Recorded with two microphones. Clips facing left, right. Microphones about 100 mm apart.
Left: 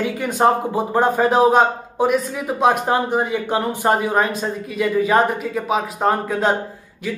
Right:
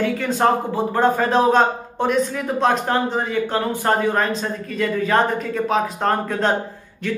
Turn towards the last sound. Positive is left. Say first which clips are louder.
# right 1 dB
turn(degrees=10)  # may be behind; listen again after turning